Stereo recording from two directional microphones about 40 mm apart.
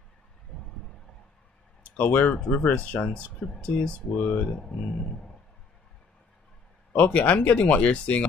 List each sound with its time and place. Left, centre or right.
0.5 s a sound: left
2.0 s speech: left
2.3 s speech: left
4.2 s speech: left
4.5 s speech: left
7.1 s speech: left